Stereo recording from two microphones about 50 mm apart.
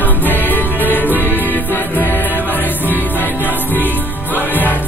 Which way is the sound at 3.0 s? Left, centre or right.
Left.